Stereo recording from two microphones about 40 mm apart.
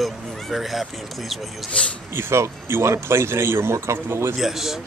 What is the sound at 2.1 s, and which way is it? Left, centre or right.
Speech, right.